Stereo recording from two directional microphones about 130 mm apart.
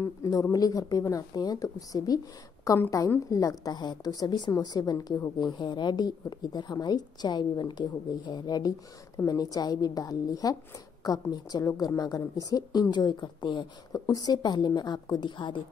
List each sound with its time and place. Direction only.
0.0 s a woman's voice: 25° left (ahead or behind)
5.4 s a woman's voice: 35° left (ahead or behind)